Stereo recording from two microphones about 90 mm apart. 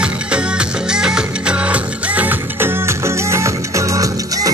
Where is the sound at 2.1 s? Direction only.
30° right (ahead or behind).